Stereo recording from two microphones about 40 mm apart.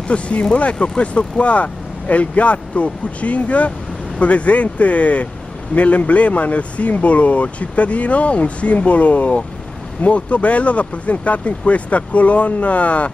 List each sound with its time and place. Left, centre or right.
0.1 s speech: left